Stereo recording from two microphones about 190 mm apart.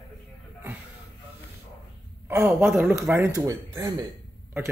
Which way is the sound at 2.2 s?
15° right (ahead or behind).